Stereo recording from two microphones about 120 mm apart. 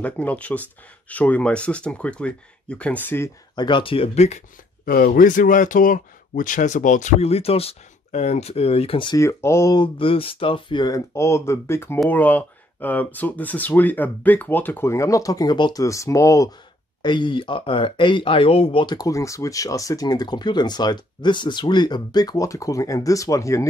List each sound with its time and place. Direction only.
0.0 s speech: 10° left (ahead or behind)
3.5 s speech: 40° left (ahead or behind); by 4.4 s 65° left (ahead or behind)
5.2 s speech: 90° left; by 9.1 s 50° left (ahead or behind)
9.1 s speech: 25° left (ahead or behind)
9.8 s speech: 45° left (ahead or behind)
15.8 s speech: 25° left (ahead or behind)
17.0 s speech: 40° left (ahead or behind)
18.9 s speech: 30° left (ahead or behind)